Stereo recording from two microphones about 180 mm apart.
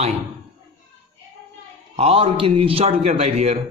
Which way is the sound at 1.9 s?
35° right (ahead or behind).